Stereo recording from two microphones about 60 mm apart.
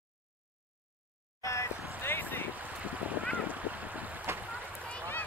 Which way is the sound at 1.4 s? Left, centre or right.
Left.